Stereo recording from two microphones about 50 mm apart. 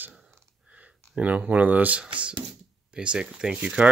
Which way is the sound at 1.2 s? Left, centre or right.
Right.